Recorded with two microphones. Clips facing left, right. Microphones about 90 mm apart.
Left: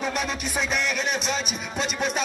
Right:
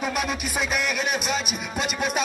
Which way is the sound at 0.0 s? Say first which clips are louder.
Right 1 dB; 5° right (ahead or behind).